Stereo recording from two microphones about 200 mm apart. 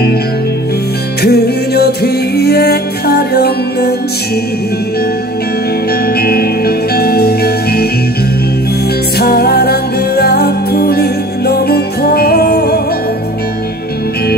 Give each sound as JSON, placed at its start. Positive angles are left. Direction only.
{"t": 1.2, "sound": "music", "side_deg": 50}
{"t": 6.2, "sound": "music", "side_deg": 50}
{"t": 9.2, "sound": "music", "side_deg": 50}